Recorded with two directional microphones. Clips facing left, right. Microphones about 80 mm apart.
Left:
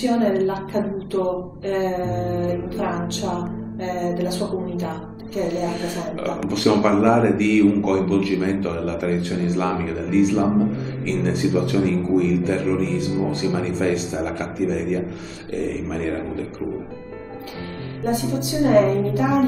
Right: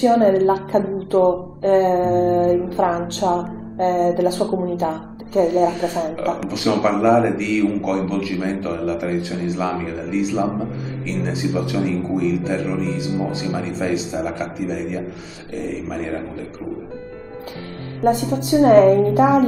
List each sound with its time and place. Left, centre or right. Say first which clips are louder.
0.0 s speech: right 5 dB; right
5.7 s a man's voice: right 5 dB; centre
18.1 s speech: right 4 dB; right